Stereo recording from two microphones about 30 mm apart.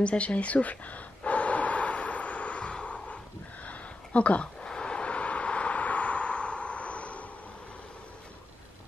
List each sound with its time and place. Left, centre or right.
0.0 s gasp: left
3.6 s a sound: left
4.6 s vehicle: left